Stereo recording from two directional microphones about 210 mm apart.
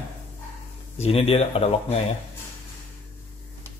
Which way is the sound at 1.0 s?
30° left (ahead or behind).